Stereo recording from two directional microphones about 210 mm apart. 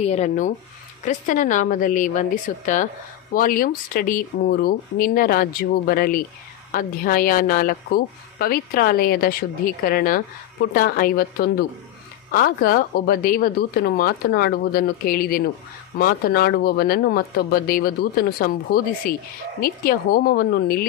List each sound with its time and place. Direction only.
0.0 s a woman's voice: 35° left (ahead or behind)